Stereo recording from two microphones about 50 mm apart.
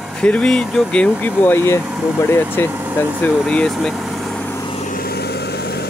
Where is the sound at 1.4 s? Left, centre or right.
Left.